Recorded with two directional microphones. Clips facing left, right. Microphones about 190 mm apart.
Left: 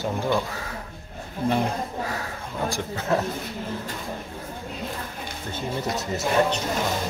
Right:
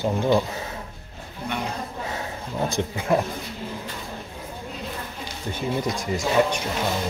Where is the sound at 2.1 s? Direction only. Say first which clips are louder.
Right 1 dB; 20° right (ahead or behind).